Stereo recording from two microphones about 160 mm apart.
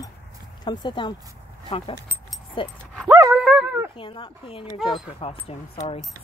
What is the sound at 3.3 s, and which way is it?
Dog, 5° right (ahead or behind).